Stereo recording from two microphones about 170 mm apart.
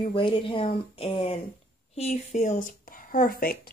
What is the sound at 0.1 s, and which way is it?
Speech, 30° left (ahead or behind).